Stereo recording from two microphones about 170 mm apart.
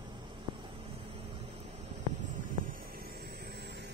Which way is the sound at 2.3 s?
55° right (ahead or behind).